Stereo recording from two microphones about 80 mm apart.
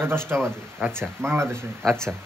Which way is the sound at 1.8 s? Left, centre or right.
Centre.